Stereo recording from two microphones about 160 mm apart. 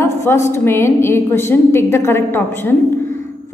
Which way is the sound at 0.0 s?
15° left (ahead or behind).